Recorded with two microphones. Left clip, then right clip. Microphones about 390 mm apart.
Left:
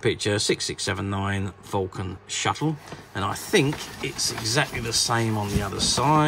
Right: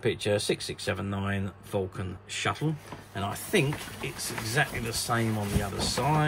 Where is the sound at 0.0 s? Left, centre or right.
Centre.